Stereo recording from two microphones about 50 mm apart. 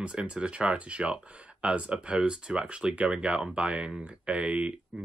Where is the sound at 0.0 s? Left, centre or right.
Right.